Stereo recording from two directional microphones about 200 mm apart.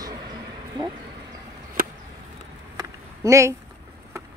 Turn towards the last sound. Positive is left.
turn(degrees=-15)  # may be behind; listen again after turning